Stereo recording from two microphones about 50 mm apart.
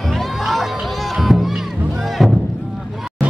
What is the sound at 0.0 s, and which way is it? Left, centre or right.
Music, centre.